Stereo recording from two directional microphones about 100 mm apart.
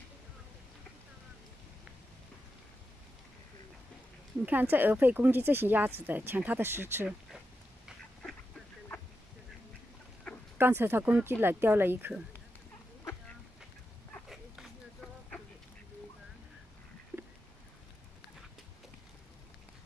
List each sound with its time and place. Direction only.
4.5 s speech: 15° right (ahead or behind)
10.3 s chicken: 10° left (ahead or behind)
10.6 s speech: 25° right (ahead or behind)
14.3 s a sound: centre (ahead or behind)